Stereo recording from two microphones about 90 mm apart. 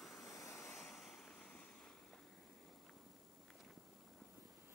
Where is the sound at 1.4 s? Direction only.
10° left (ahead or behind).